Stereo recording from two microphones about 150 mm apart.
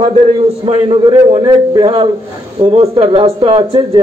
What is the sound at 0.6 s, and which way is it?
A man's voice, 40° right (ahead or behind).